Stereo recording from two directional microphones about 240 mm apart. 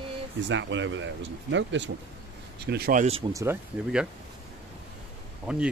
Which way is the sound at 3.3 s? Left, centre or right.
Centre.